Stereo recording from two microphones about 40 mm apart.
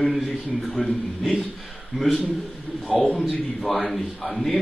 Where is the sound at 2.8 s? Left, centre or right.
Centre.